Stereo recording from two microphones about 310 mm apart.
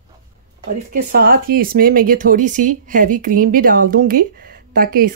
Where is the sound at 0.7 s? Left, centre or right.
Right.